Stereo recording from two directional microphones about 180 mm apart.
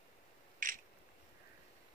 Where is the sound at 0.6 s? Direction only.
45° right (ahead or behind).